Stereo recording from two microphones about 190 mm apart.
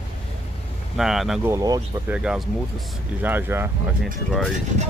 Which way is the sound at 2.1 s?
5° right (ahead or behind).